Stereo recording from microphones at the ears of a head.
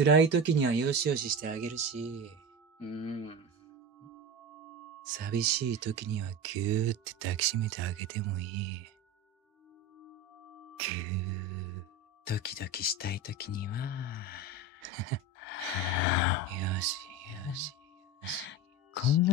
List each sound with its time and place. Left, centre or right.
0.0 s speech: right
4.0 s speech: right
9.9 s singing bowl: left
10.8 s music: right
12.3 s speech: left
14.8 s speech: right
15.3 s music: left
16.5 s speech: right
18.5 s music: left